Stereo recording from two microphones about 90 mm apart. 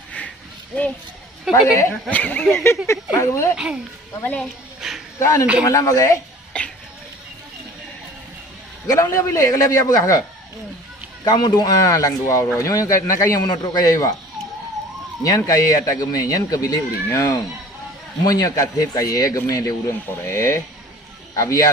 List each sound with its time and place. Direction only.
1.5 s a woman's voice: 5° right (ahead or behind)
2.0 s speech: 20° left (ahead or behind)
2.5 s speech: 30° left (ahead or behind)
3.5 s speech: 10° right (ahead or behind)
4.2 s a woman's voice: 15° left (ahead or behind)
4.7 s a sound: 5° right (ahead or behind)
5.2 s speech: 35° left (ahead or behind)
6.5 s a sound: 10° left (ahead or behind)
9.0 s speech: 35° left (ahead or behind)
11.2 s speech: 50° left (ahead or behind)
15.2 s speech: 40° left (ahead or behind)
20.1 s speech: 35° left (ahead or behind)